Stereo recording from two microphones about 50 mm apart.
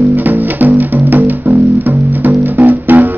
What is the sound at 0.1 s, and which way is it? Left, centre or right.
Music, right.